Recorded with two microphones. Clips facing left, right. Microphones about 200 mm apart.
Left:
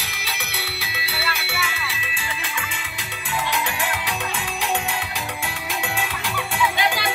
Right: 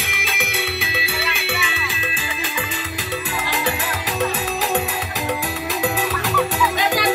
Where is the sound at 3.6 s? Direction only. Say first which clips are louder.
Right 3 dB; 40° right (ahead or behind).